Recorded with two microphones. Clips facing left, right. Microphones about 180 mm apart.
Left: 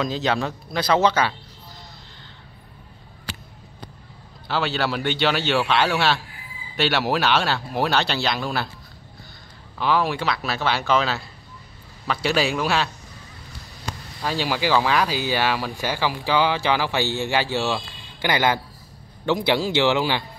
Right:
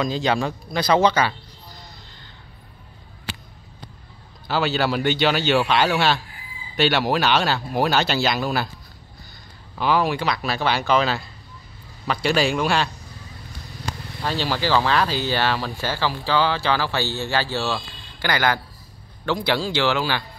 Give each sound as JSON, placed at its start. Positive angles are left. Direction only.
{"t": 0.0, "sound": "speech", "side_deg": 0}
{"t": 4.5, "sound": "speech", "side_deg": 0}
{"t": 9.8, "sound": "speech", "side_deg": -5}
{"t": 14.2, "sound": "speech", "side_deg": 10}